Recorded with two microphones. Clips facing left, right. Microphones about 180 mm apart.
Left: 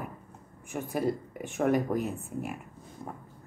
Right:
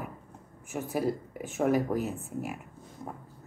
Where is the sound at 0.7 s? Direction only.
5° right (ahead or behind).